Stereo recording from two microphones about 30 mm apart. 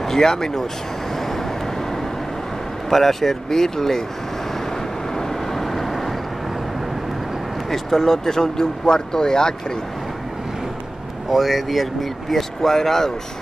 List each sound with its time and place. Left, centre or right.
0.0 s speech: centre
2.9 s speech: centre
5.1 s vehicle: centre
7.7 s speech: centre
11.2 s speech: centre